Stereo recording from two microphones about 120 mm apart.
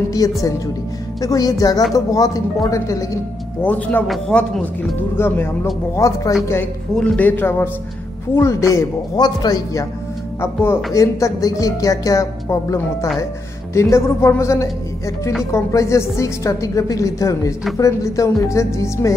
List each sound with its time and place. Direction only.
0.2 s a man's voice: 30° left (ahead or behind)
3.6 s speech: 15° left (ahead or behind)
5.1 s speech: 20° left (ahead or behind)
7.0 s a man's voice: 10° left (ahead or behind); by 9.8 s 35° left (ahead or behind)
10.4 s speech: 20° left (ahead or behind)